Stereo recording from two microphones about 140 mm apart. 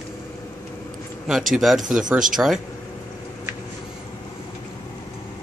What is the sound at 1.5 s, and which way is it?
Speech, centre (ahead or behind).